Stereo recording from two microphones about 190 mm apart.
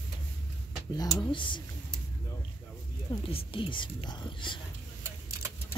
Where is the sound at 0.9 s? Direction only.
20° left (ahead or behind).